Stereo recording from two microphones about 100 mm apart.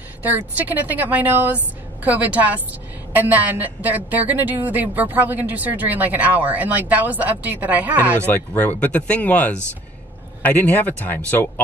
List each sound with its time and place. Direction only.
0.6 s a woman's voice: 15° right (ahead or behind)
8.3 s speech: 15° left (ahead or behind)